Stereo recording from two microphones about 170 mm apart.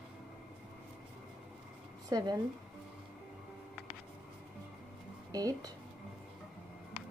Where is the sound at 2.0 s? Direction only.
20° right (ahead or behind).